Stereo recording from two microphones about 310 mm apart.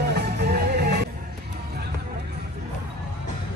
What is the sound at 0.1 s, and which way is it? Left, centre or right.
Music, right.